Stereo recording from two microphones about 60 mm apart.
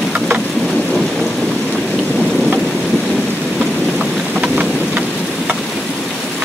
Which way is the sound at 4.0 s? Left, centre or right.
Centre.